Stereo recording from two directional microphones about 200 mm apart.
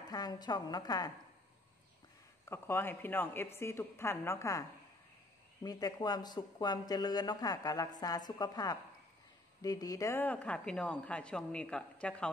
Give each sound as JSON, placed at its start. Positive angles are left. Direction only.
{"t": 0.1, "sound": "speech", "side_deg": 20}
{"t": 2.5, "sound": "speech", "side_deg": 10}